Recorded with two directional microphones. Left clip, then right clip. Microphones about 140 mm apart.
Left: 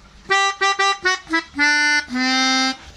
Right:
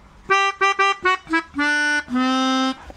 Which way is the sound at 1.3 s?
10° right (ahead or behind).